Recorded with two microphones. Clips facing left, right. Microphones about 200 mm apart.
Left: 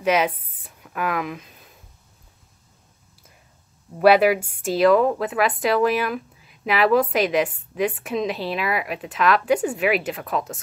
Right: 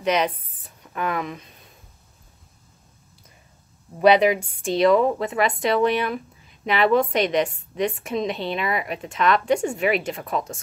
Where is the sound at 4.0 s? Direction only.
5° left (ahead or behind).